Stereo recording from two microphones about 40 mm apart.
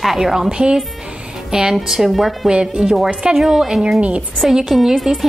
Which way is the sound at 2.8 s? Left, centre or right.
Centre.